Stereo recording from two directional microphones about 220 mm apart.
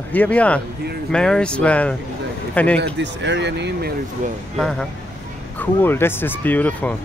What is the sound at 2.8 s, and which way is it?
Speech, 55° right (ahead or behind).